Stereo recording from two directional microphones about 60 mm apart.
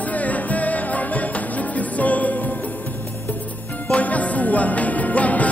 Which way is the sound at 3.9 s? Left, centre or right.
Left.